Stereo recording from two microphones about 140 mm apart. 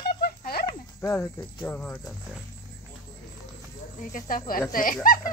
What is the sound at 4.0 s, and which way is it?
Speech, 75° left (ahead or behind).